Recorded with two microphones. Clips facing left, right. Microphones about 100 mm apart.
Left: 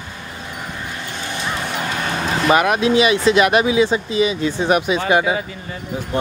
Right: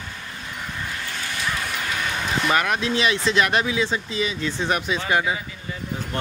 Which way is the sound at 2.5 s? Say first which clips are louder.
Left 9 dB; 15° left (ahead or behind).